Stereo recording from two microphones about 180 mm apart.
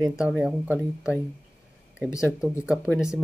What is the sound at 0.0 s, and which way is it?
Speech, centre (ahead or behind).